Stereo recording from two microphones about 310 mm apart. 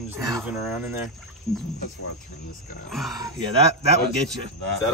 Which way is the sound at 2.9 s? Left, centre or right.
Centre.